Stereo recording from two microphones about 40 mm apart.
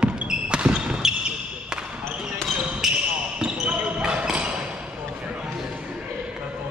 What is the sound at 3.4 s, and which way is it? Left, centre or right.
Basketball bounce, right.